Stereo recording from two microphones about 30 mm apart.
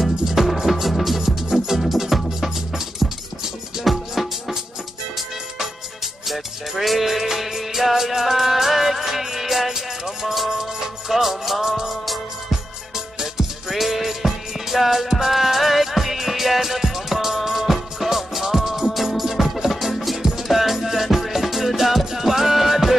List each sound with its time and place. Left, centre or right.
0.2 s music: centre
1.2 s music: centre
3.8 s music: centre
6.8 s music: centre
9.7 s music: centre
13.7 s music: centre
20.2 s music: centre
20.4 s music: centre